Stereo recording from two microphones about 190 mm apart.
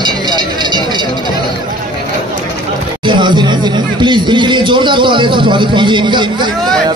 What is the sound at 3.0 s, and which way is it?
Speech, 25° right (ahead or behind).